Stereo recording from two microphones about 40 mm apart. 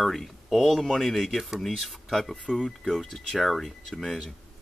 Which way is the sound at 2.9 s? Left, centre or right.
Centre.